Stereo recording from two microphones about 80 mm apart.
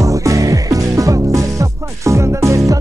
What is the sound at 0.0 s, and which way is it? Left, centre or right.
Music, right.